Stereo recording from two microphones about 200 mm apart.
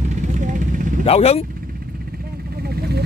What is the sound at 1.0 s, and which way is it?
Speech, 30° left (ahead or behind).